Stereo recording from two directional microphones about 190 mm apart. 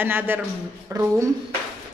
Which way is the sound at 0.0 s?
10° right (ahead or behind).